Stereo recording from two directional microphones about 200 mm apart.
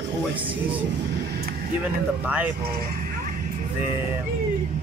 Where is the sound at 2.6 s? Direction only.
45° right (ahead or behind).